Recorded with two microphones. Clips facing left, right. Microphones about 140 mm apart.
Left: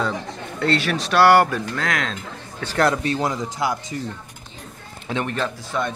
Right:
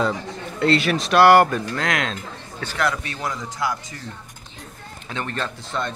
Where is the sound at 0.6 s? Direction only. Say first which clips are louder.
Right 2 dB; centre (ahead or behind).